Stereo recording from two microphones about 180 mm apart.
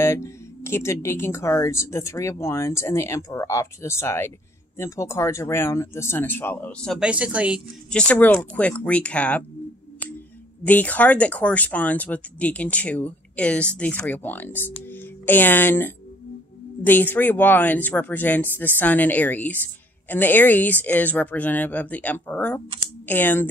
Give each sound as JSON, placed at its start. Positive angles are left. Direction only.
{"t": 0.0, "sound": "speech", "side_deg": 15}
{"t": 7.9, "sound": "speech", "side_deg": 5}
{"t": 10.6, "sound": "speech", "side_deg": 10}